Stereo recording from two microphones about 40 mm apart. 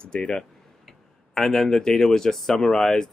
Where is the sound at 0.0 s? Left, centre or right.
Left.